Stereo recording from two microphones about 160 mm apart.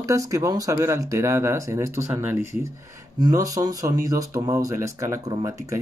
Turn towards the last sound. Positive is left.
turn(degrees=-20)  # may be behind; listen again after turning